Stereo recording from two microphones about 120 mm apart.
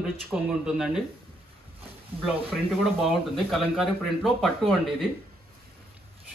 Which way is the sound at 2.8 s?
Centre (ahead or behind).